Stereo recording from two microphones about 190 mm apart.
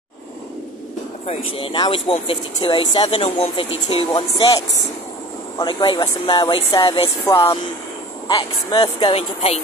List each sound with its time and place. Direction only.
1.6 s speech: 25° left (ahead or behind)